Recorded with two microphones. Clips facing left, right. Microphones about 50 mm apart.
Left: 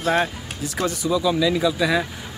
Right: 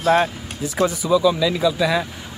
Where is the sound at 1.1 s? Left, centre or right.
Centre.